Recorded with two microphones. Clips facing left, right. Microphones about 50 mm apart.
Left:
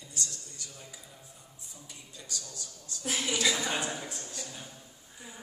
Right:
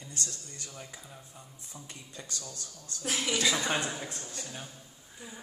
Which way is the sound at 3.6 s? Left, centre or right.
Right.